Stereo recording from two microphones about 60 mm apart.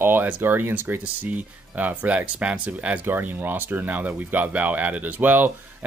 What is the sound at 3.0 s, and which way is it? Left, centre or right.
Speech, right.